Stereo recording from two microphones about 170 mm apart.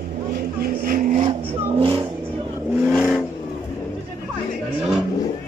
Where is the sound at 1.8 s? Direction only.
30° right (ahead or behind).